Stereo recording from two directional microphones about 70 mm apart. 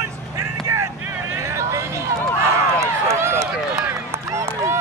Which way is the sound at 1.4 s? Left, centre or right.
Right.